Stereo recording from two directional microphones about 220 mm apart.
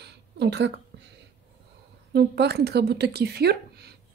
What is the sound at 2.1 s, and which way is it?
A woman's voice, 50° right (ahead or behind).